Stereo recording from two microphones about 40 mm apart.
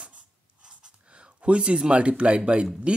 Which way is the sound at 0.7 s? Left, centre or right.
Right.